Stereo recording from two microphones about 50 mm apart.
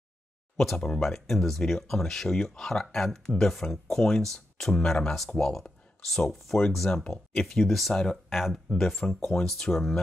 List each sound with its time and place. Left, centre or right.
0.6 s speech: centre
6.9 s speech: centre
7.6 s speech: centre
8.6 s speech: centre
9.2 s speech: centre
9.5 s speech: centre